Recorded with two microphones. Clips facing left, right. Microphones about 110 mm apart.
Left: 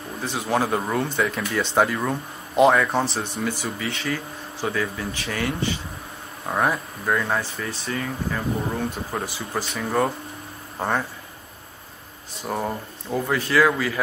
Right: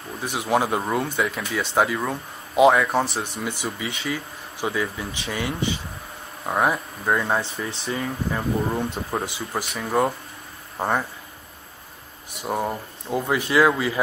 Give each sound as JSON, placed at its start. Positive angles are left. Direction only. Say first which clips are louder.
{"t": 0.2, "sound": "speech", "louder": "right 1 dB", "side_deg": -15}
{"t": 7.2, "sound": "speech", "louder": "right 1 dB", "side_deg": -25}
{"t": 9.5, "sound": "speech", "louder": "even", "side_deg": -5}
{"t": 12.4, "sound": "speech", "louder": "right 1 dB", "side_deg": -10}